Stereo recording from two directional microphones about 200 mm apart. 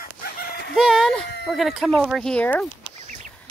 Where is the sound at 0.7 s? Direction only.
Centre (ahead or behind).